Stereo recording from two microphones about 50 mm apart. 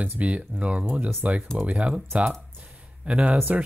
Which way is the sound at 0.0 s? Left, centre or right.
Right.